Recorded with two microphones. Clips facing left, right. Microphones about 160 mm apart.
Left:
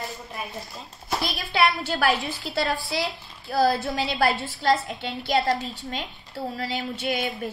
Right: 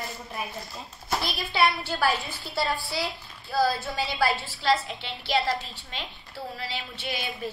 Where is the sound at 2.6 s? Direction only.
75° left (ahead or behind).